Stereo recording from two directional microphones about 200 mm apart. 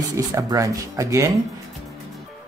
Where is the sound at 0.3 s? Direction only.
15° right (ahead or behind).